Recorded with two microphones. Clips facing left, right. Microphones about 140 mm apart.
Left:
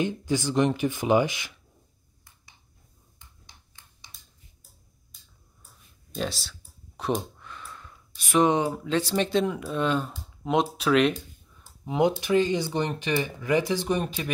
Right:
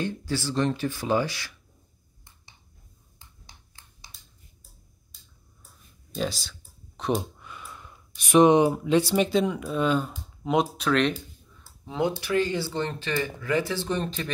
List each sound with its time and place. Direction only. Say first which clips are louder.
0.0 s speech: left 3 dB; 15° left (ahead or behind)
3.2 s a sound: right 2 dB; 35° right (ahead or behind)
6.1 s speech: right 1 dB; centre (ahead or behind)
11.6 s speech: left 4 dB; 15° left (ahead or behind)